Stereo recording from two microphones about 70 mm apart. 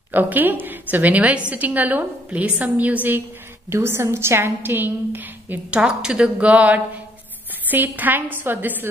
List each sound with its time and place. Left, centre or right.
0.1 s a woman's voice: right
3.7 s a woman's voice: right